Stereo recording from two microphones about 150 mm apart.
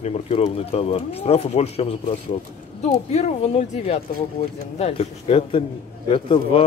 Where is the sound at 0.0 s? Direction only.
45° left (ahead or behind).